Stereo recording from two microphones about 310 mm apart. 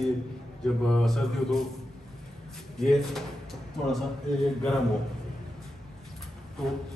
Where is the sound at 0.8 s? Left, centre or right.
Centre.